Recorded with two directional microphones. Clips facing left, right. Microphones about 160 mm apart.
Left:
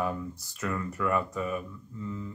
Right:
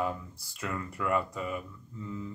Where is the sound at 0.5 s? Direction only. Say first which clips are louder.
Left 3 dB; 20° right (ahead or behind).